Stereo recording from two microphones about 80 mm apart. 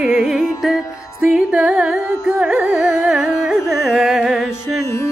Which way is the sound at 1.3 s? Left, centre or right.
Centre.